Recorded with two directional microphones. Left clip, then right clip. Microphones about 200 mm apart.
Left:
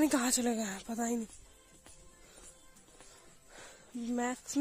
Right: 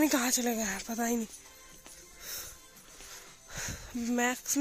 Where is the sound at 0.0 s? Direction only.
15° left (ahead or behind).